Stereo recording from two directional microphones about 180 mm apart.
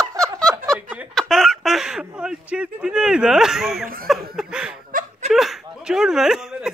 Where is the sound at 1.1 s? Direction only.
Centre (ahead or behind).